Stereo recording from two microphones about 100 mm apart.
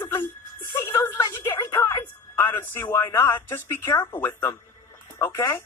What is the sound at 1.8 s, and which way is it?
Music, 25° left (ahead or behind).